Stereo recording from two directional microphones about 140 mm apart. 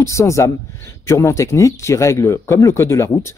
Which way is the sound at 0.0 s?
20° left (ahead or behind).